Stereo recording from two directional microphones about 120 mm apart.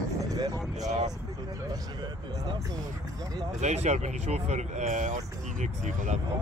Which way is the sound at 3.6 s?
70° right (ahead or behind).